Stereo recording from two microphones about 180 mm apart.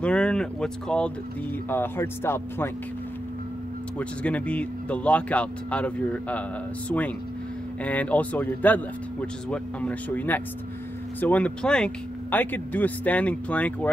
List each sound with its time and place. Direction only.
0.0 s speech: 5° left (ahead or behind)
4.0 s speech: 5° left (ahead or behind)
7.8 s speech: 10° left (ahead or behind)